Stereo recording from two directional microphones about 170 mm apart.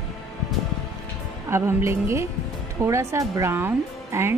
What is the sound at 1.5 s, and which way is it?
Speech, 15° right (ahead or behind).